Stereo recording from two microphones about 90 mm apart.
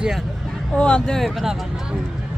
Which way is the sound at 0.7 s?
10° left (ahead or behind).